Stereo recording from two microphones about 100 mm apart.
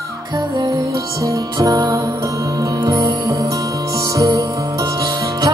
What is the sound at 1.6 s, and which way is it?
Music, 40° right (ahead or behind).